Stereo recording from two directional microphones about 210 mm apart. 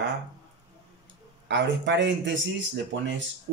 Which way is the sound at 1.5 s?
55° right (ahead or behind).